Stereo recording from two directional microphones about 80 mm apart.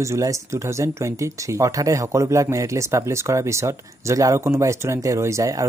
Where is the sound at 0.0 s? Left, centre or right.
Right.